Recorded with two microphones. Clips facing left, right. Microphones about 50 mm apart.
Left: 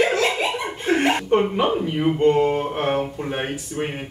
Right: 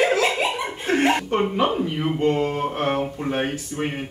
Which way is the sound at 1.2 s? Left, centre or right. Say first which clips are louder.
Left 2 dB; centre.